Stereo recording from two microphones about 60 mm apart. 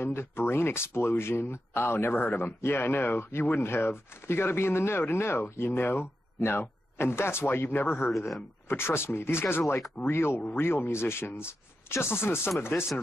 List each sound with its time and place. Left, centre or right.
0.0 s speech: left